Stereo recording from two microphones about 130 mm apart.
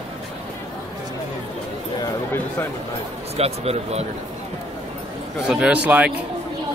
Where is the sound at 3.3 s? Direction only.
50° right (ahead or behind).